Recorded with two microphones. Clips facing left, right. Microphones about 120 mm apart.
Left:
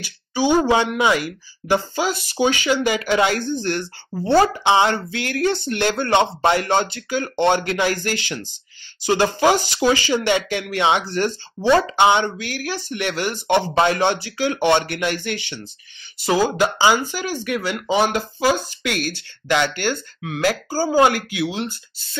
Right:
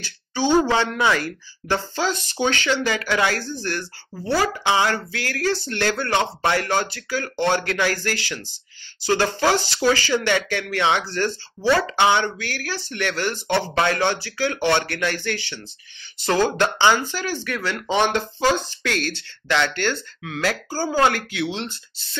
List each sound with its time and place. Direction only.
0.0 s speech: 15° left (ahead or behind)